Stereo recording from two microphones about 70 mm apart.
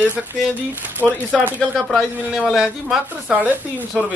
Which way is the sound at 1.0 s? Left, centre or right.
Centre.